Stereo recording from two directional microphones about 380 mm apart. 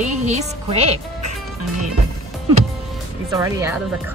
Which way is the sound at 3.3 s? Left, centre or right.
Centre.